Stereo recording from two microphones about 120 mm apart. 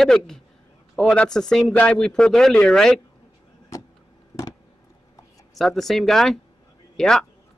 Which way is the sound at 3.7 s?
30° left (ahead or behind).